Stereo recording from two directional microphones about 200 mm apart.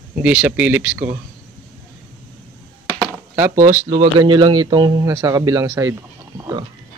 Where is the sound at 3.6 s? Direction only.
35° right (ahead or behind).